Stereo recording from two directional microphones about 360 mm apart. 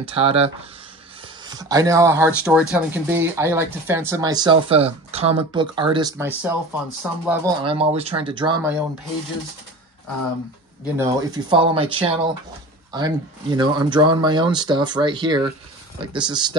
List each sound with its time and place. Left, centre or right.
0.0 s speech: centre
1.5 s speech: centre
11.0 s speech: centre